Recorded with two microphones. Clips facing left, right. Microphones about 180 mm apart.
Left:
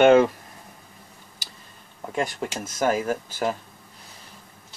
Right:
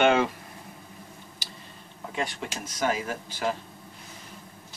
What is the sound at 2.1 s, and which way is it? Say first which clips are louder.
Speech: left 5 dB; 45° left (ahead or behind).